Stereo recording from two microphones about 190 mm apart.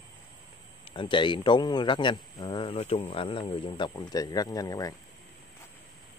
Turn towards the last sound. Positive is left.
turn(degrees=20)  # may be behind; listen again after turning